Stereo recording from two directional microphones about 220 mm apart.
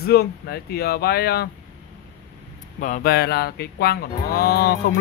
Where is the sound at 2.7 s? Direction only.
35° left (ahead or behind).